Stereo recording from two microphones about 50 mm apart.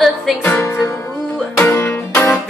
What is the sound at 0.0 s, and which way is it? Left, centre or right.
Music, centre.